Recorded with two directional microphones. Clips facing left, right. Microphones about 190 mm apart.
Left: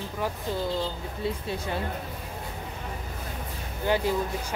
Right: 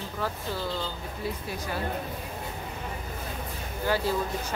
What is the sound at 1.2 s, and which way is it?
Speech, 25° left (ahead or behind).